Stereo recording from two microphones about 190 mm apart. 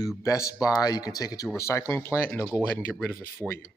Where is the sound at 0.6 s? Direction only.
20° left (ahead or behind).